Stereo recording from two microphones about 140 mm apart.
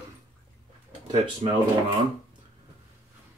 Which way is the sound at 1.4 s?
45° right (ahead or behind).